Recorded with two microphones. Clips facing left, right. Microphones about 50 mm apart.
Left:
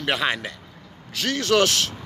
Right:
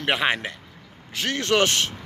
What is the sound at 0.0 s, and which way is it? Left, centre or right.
Speech, right.